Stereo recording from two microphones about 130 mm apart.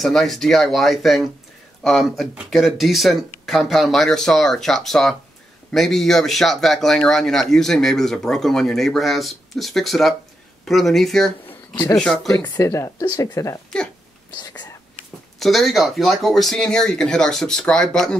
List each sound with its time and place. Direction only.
0.0 s speech: centre (ahead or behind)
11.7 s speech: 35° left (ahead or behind)
12.0 s speech: 5° left (ahead or behind)
12.3 s speech: 25° left (ahead or behind)
15.3 s speech: centre (ahead or behind)